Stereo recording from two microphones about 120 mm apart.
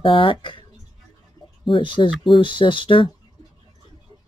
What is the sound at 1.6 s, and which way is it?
Speech, 45° left (ahead or behind).